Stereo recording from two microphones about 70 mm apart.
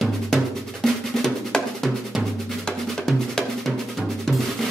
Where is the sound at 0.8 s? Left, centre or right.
Centre.